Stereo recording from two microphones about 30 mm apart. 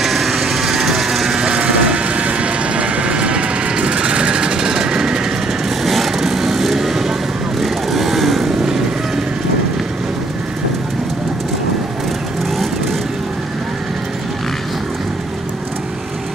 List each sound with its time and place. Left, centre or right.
0.0 s vehicle: centre; by 5.2 s right
5.9 s vehicle: centre
6.1 s wood: centre
7.6 s vehicle: centre